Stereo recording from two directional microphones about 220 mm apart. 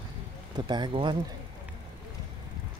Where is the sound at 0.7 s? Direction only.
20° right (ahead or behind).